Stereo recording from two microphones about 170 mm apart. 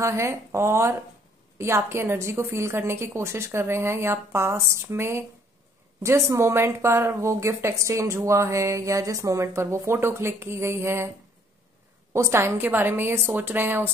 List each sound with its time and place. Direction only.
0.0 s a woman's voice: 15° right (ahead or behind)
12.1 s a woman's voice: 15° right (ahead or behind)